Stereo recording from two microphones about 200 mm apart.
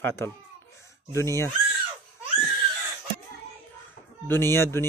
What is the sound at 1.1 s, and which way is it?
Speech, 15° left (ahead or behind).